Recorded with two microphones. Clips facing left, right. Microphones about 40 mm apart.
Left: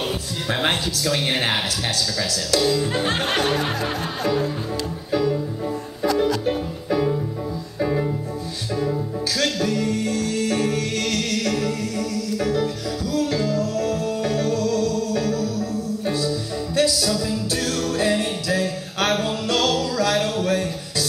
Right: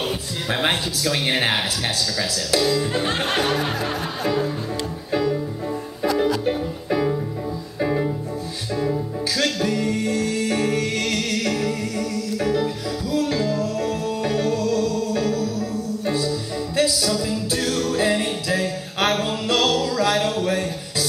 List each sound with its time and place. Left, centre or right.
0.5 s speech: centre
2.6 s music: centre
9.4 s music: centre